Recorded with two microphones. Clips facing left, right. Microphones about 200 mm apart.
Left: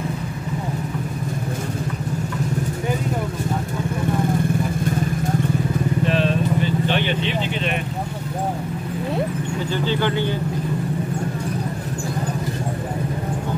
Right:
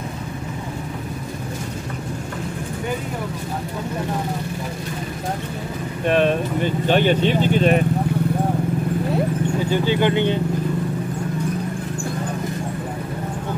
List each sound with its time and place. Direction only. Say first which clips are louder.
6.0 s vehicle: right 5 dB; 55° right (ahead or behind)
9.7 s speech: right 3 dB; 15° right (ahead or behind)